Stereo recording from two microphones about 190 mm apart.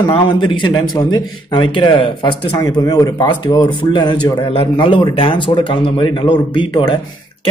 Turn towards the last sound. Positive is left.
turn(degrees=25)  # may be behind; listen again after turning